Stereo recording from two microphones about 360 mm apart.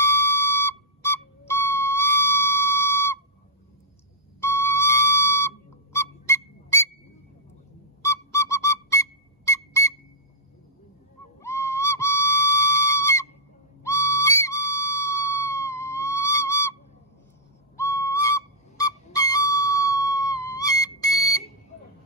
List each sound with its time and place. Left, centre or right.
0.0 s whistle: centre
4.4 s whistle: centre
8.0 s whistle: centre
11.4 s whistle: centre
17.7 s whistle: centre
18.8 s music: centre